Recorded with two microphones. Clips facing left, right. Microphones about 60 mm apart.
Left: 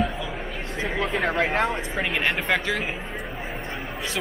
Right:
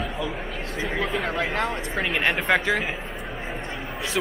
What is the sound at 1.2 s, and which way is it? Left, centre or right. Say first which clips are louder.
Speech: left 3 dB; left.